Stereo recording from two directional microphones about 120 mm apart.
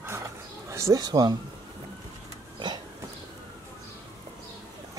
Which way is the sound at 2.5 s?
40° right (ahead or behind).